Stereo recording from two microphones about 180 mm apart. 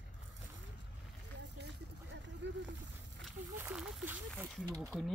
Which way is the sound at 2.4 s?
80° right.